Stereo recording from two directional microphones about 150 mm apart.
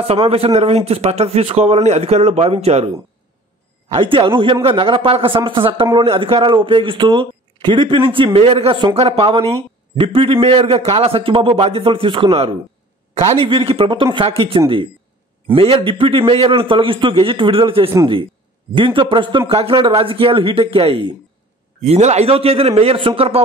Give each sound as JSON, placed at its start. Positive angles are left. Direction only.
{"t": 0.0, "sound": "speech", "side_deg": -40}
{"t": 3.9, "sound": "speech", "side_deg": -35}